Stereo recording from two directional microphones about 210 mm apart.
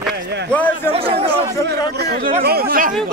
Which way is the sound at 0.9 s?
30° right (ahead or behind).